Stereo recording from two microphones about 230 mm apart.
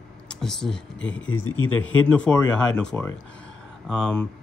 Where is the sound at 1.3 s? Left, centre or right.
Left.